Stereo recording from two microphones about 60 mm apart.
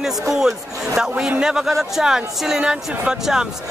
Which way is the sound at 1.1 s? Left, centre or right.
Centre.